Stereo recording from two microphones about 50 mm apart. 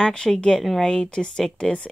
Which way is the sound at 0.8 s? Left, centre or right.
Centre.